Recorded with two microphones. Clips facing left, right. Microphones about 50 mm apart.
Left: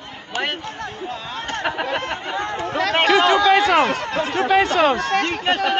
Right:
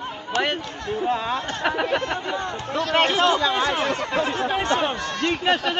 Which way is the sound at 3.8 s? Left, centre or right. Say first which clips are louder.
Left 3 dB; left.